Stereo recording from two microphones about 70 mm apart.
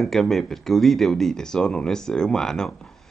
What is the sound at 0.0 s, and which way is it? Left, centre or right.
Speech, centre.